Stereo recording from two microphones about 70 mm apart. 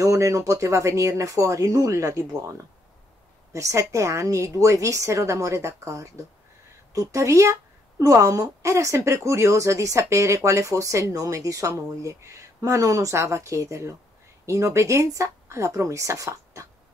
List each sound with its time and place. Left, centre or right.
0.0 s speech: right
3.5 s speech: right